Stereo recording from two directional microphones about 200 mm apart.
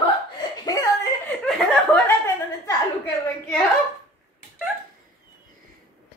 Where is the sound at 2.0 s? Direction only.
15° left (ahead or behind).